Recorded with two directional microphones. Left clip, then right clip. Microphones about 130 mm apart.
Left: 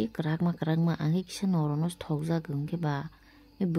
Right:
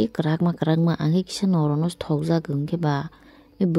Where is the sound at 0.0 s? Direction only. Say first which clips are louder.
Right 8 dB; 40° right (ahead or behind).